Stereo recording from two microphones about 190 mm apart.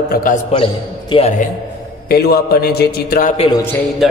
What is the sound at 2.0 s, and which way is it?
A man's voice, 55° left (ahead or behind).